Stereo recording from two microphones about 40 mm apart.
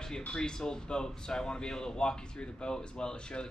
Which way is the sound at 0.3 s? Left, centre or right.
Centre.